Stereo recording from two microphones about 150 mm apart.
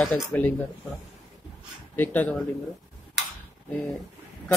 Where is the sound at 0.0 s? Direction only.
5° left (ahead or behind).